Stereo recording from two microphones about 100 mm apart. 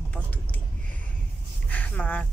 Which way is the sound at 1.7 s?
15° left (ahead or behind).